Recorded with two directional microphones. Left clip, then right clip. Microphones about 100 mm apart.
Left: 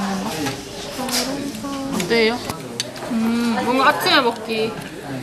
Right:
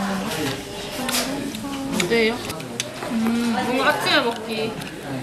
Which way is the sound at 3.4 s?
25° left (ahead or behind).